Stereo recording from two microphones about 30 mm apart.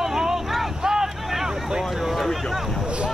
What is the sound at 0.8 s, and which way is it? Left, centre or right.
Vehicle, right.